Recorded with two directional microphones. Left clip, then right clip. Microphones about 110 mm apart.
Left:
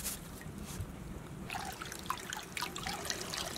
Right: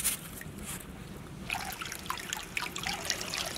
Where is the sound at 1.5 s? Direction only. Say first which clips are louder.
Right 5 dB; 5° right (ahead or behind).